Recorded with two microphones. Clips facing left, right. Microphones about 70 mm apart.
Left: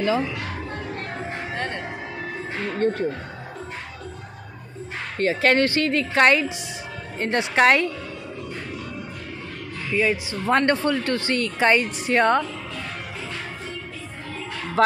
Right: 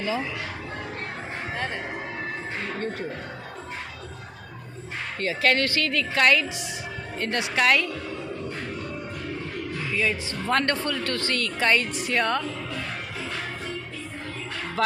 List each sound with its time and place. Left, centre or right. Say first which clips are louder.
1.5 s speech: even; centre
5.2 s a woman's voice: left 4 dB; left
9.9 s a woman's voice: left 6 dB; centre